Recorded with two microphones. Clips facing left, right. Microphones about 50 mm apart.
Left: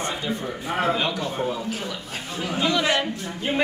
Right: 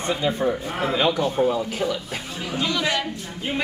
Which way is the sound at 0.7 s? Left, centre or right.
Centre.